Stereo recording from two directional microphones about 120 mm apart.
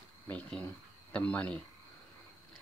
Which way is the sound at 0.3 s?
10° left (ahead or behind).